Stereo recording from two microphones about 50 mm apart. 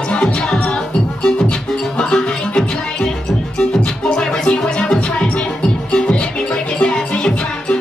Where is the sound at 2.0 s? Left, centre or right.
Centre.